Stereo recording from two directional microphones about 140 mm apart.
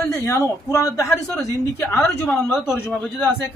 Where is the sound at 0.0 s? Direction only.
15° left (ahead or behind).